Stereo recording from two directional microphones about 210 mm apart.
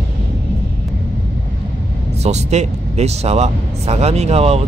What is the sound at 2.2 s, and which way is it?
Speech, 30° right (ahead or behind).